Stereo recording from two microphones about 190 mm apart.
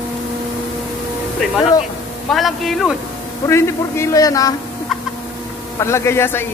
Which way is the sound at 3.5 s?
15° left (ahead or behind).